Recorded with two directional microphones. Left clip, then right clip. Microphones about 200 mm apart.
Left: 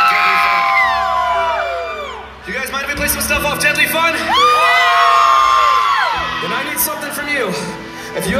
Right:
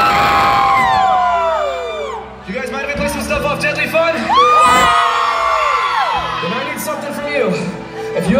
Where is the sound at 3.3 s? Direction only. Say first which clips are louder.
Left 3 dB; 30° left (ahead or behind).